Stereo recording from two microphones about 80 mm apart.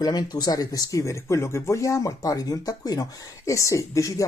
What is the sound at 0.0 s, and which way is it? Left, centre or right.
Speech, left.